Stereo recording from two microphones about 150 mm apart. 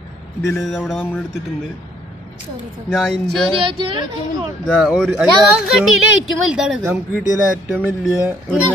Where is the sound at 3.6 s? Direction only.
35° right (ahead or behind).